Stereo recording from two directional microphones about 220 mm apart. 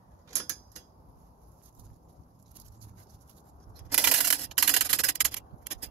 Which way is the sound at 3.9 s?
Centre (ahead or behind).